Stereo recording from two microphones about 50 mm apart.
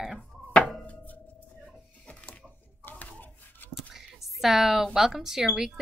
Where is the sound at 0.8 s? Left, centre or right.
Left.